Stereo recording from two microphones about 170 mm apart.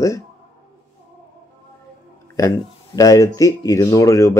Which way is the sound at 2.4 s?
20° left (ahead or behind).